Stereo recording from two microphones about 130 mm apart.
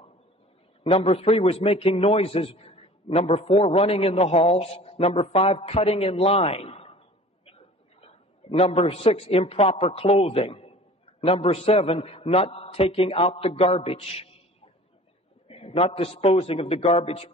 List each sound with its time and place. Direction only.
0.8 s a man's voice: 45° left (ahead or behind)
8.0 s a man's voice: 50° left (ahead or behind)
15.4 s a man's voice: 50° left (ahead or behind)